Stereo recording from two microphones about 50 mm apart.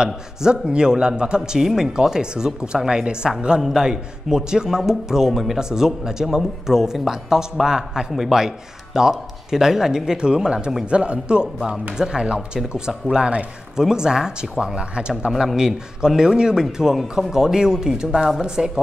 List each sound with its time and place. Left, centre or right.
0.0 s a man's voice: centre